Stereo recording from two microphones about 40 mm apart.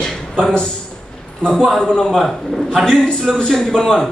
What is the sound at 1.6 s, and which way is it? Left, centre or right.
A man's voice, centre.